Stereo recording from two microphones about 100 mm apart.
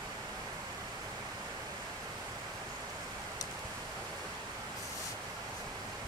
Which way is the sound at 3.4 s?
40° left (ahead or behind).